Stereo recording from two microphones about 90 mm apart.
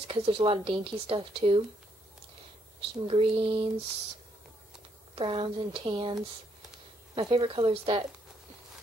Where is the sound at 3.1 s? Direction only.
90° right.